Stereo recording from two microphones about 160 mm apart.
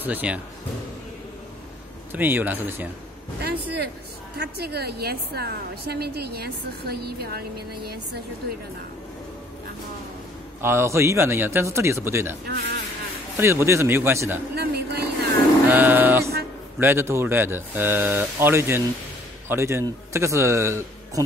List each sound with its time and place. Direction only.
0.0 s speech: 10° right (ahead or behind)
2.1 s speech: 10° right (ahead or behind)
3.3 s a man's voice: 90° right
10.6 s speech: 15° right (ahead or behind)
12.4 s a man's voice: 90° right
13.4 s speech: 15° right (ahead or behind)
14.5 s speech: 80° right
15.7 s speech: 10° right (ahead or behind)